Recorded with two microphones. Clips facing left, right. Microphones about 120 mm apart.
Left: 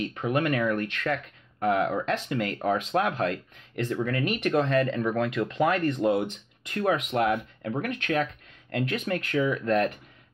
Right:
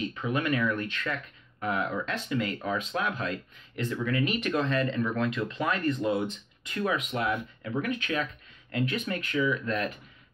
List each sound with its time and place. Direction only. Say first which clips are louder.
0.1 s speech: left 3 dB; 55° left (ahead or behind)